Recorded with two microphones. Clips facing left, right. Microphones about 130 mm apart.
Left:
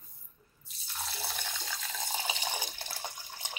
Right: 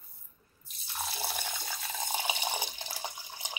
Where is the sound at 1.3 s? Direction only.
15° right (ahead or behind).